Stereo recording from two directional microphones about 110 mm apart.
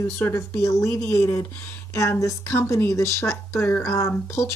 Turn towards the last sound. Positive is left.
turn(degrees=25)  # may be behind; listen again after turning